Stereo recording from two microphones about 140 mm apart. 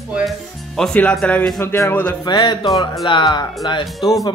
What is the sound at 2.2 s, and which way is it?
A man's voice, 30° left (ahead or behind).